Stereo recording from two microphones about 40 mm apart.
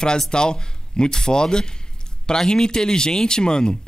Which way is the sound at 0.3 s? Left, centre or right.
Centre.